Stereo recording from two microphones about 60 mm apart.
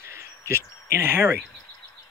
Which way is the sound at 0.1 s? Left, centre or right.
Right.